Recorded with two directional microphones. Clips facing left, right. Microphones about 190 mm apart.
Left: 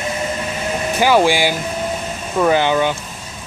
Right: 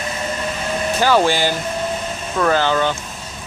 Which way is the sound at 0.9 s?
15° left (ahead or behind).